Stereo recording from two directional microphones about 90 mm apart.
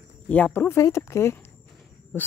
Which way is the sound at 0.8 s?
35° left (ahead or behind).